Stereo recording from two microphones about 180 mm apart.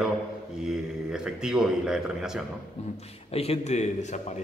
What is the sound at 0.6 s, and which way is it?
A man's voice, 5° right (ahead or behind).